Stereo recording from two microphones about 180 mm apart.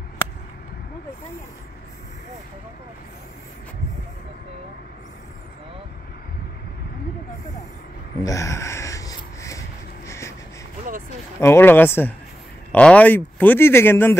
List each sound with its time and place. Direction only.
8.2 s rub: 20° left (ahead or behind)
10.0 s wheeze: 15° left (ahead or behind)
11.3 s speech: 15° left (ahead or behind)